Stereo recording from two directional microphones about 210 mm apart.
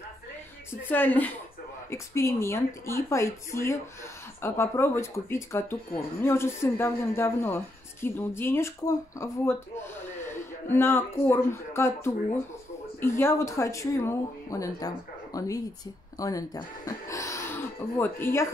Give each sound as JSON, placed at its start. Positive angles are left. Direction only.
{"t": 0.8, "sound": "speech", "side_deg": 10}